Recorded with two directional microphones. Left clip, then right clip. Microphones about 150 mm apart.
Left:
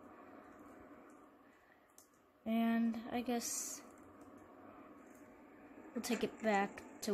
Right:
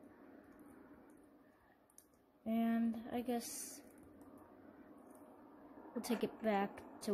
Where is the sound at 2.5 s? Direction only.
Centre (ahead or behind).